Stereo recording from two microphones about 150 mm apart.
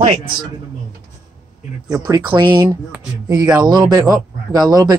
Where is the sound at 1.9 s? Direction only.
25° right (ahead or behind).